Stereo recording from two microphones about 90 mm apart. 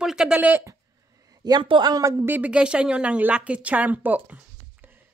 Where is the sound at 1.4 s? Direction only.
55° right (ahead or behind).